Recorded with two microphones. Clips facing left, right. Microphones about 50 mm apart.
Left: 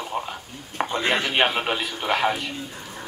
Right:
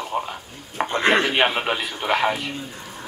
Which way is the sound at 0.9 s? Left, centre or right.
Right.